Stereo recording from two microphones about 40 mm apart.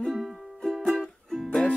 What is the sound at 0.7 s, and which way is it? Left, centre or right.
Music, centre.